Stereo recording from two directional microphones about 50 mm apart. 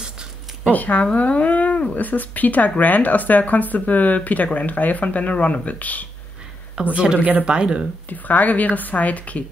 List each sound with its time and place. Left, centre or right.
0.7 s speech: left
6.7 s speech: right
8.1 s speech: left